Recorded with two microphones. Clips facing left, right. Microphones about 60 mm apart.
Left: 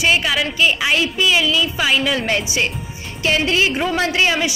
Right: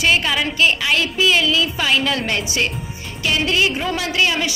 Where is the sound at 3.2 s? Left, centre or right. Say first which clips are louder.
Left 1 dB; left.